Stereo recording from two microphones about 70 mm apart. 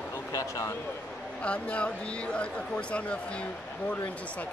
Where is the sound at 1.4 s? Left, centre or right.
Centre.